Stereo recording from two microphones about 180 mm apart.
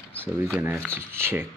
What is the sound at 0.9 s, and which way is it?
Speech, 15° right (ahead or behind).